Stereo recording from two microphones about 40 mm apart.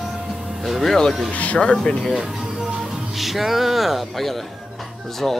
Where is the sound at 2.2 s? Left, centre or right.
Centre.